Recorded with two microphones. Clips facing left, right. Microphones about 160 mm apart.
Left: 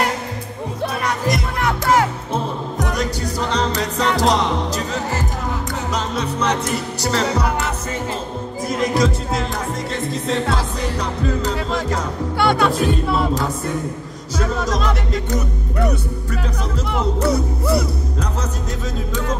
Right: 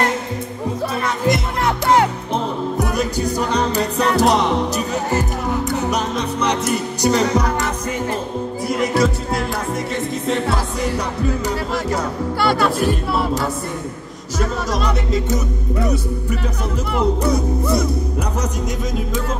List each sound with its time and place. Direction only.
1.2 s music: 25° right (ahead or behind)
2.3 s music: 10° right (ahead or behind)
6.4 s music: 15° right (ahead or behind)
8.9 s music: 5° right (ahead or behind)
14.7 s music: 5° right (ahead or behind)
17.3 s music: 20° right (ahead or behind)